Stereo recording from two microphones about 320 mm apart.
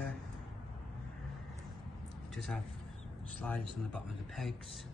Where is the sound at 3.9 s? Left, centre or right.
Centre.